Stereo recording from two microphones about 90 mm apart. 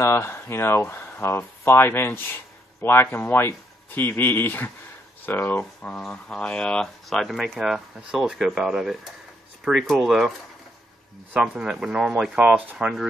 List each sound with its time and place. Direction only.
0.0 s speech: 30° left (ahead or behind)
5.8 s speech: 5° left (ahead or behind)
11.3 s speech: 5° right (ahead or behind)